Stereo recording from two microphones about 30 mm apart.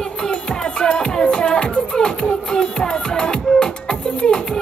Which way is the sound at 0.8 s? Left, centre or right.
Left.